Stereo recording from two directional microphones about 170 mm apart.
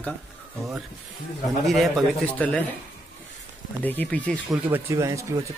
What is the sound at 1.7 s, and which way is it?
Speech, centre (ahead or behind).